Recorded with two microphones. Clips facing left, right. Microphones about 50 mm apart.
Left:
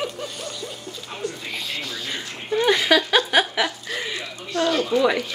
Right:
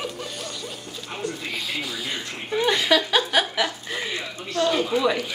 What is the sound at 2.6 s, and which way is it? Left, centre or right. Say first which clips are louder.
Speech: left 2 dB; centre.